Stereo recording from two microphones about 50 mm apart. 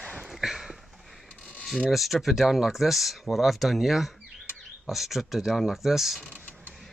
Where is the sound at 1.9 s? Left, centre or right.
Centre.